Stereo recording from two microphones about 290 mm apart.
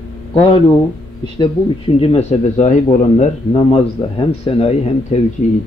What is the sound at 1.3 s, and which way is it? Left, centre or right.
Speech, centre.